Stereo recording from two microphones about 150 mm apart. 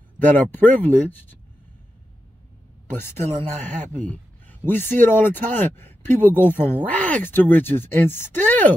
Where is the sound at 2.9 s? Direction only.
15° left (ahead or behind).